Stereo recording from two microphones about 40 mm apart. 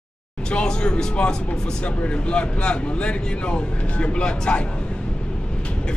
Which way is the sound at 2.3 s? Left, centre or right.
Left.